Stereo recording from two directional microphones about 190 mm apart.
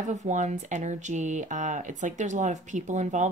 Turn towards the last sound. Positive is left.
turn(degrees=-40)  # may be behind; listen again after turning